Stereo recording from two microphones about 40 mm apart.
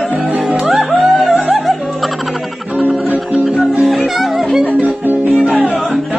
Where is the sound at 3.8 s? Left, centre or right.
Centre.